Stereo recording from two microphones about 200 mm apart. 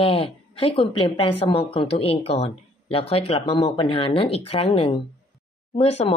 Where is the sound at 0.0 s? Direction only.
25° left (ahead or behind).